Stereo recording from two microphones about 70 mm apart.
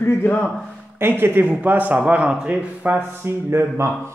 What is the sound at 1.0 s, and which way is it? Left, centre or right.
Speech, right.